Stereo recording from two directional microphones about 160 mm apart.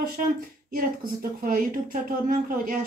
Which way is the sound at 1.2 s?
65° right (ahead or behind).